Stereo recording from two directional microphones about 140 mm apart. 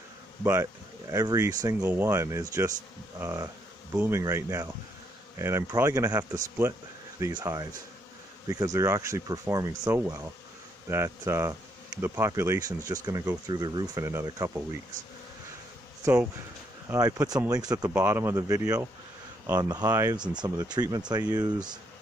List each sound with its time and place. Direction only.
0.4 s speech: 15° right (ahead or behind)
16.0 s speech: 15° right (ahead or behind)
17.9 s speech: 15° right (ahead or behind)